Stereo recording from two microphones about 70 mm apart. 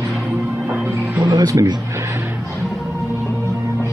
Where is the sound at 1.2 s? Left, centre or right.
Right.